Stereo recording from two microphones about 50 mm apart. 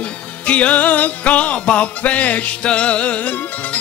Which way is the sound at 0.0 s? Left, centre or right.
Left.